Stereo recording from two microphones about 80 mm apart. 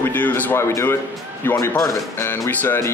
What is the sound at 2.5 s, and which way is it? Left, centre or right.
Speech, left.